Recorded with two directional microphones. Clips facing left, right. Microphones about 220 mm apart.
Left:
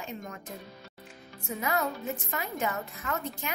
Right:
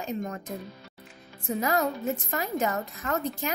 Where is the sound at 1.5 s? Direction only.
40° right (ahead or behind).